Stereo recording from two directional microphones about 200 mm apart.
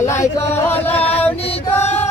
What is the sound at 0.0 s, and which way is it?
Music, 15° left (ahead or behind).